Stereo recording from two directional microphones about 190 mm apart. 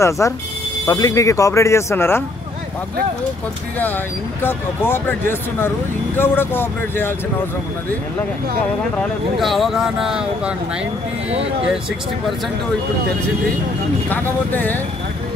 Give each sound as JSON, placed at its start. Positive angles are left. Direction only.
{"t": 0.2, "sound": "speech", "side_deg": 15}
{"t": 3.8, "sound": "speech", "side_deg": 10}
{"t": 8.9, "sound": "speech", "side_deg": 0}
{"t": 14.0, "sound": "speech", "side_deg": 10}